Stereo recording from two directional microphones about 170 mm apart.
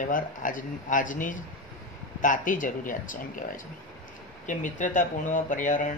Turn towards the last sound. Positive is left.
turn(degrees=50)  # may be behind; listen again after turning